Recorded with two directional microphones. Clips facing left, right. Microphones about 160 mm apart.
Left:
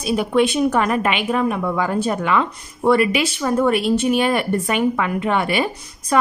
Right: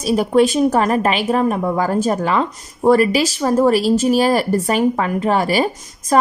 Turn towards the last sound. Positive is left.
turn(degrees=-40)  # may be behind; listen again after turning